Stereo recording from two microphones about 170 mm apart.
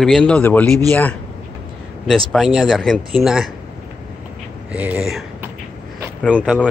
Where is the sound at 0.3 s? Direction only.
10° left (ahead or behind).